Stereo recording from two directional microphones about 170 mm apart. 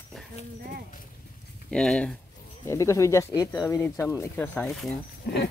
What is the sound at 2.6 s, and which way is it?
Speech, 15° left (ahead or behind).